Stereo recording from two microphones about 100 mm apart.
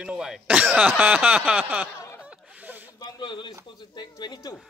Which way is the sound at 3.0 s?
50° left (ahead or behind).